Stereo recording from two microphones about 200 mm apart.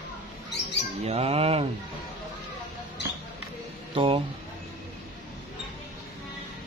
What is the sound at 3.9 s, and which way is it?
Speech, 25° right (ahead or behind).